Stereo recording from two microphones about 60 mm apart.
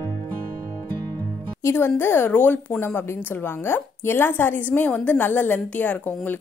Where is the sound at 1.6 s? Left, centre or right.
Left.